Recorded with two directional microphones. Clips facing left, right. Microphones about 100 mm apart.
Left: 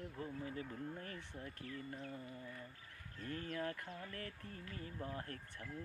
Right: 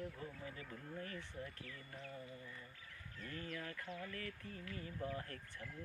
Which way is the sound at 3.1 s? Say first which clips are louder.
Left 4 dB; 40° left (ahead or behind).